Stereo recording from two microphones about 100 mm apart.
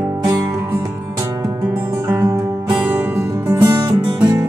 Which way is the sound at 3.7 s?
40° right (ahead or behind).